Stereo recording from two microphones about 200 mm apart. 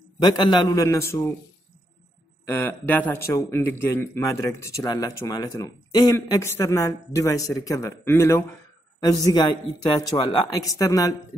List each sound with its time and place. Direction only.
0.2 s speech: 20° left (ahead or behind)
2.4 s a woman's voice: 10° left (ahead or behind)